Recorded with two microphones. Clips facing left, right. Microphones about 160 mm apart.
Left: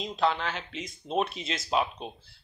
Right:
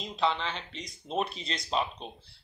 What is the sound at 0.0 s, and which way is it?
Speech, centre (ahead or behind).